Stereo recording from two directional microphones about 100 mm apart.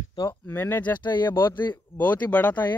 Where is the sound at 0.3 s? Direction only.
20° left (ahead or behind).